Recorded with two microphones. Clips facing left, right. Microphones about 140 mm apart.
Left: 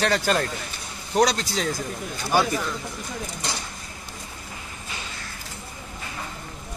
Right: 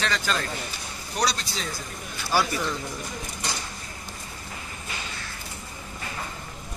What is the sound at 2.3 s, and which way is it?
Speech, 20° left (ahead or behind).